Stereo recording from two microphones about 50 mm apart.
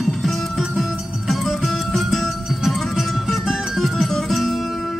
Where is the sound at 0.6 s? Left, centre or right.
Centre.